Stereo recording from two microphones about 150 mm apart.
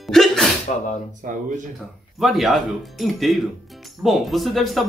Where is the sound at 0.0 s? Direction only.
Centre (ahead or behind).